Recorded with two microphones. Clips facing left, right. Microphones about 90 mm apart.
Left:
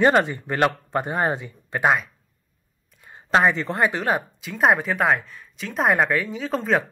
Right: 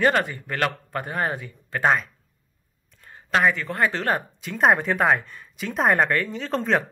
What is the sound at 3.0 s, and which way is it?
A woman's voice, 20° left (ahead or behind).